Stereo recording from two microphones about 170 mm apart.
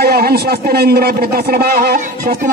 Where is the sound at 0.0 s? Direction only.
65° right (ahead or behind).